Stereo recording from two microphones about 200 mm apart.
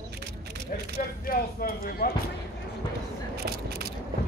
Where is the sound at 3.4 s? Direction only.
50° right (ahead or behind).